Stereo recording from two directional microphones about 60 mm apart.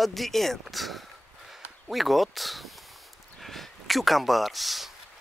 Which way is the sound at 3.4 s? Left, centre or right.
Centre.